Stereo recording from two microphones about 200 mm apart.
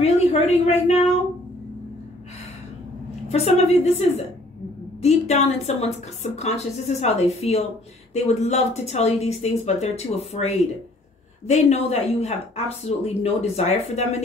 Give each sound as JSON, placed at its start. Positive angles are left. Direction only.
{"t": 0.0, "sound": "speech", "side_deg": 35}
{"t": 3.3, "sound": "speech", "side_deg": 30}
{"t": 5.0, "sound": "speech", "side_deg": 35}